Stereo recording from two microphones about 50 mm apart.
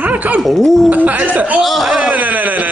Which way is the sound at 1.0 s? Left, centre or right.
Right.